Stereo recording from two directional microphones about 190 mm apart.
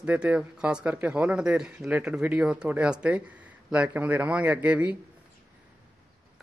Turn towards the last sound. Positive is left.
turn(degrees=-10)  # may be behind; listen again after turning